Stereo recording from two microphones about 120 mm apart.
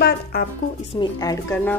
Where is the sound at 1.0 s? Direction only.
30° left (ahead or behind).